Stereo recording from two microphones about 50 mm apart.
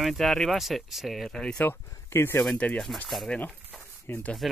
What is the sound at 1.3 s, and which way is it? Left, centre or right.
Speech, centre.